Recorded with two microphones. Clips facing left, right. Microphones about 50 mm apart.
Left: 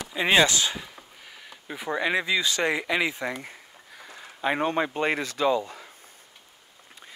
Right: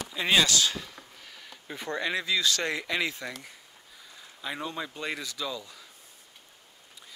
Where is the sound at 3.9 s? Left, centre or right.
Left.